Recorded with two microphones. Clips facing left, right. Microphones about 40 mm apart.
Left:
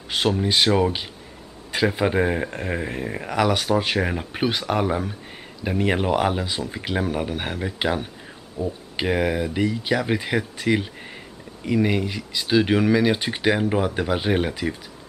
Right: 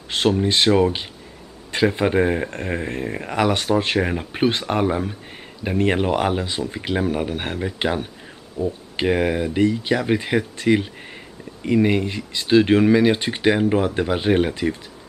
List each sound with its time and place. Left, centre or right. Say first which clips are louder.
0.1 s speech: right 2 dB; centre